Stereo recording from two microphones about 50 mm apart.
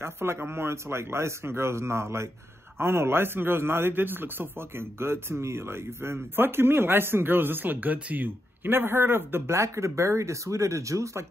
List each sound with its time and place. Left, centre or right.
0.0 s a man's voice: right
8.6 s a man's voice: right
9.6 s speech: right